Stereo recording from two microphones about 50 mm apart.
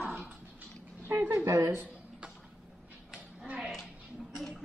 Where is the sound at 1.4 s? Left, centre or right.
Right.